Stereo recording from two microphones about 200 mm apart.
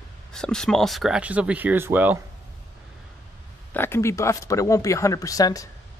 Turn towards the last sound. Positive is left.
turn(degrees=15)  # may be behind; listen again after turning